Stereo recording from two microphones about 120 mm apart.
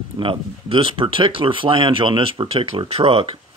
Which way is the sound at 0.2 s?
50° right (ahead or behind).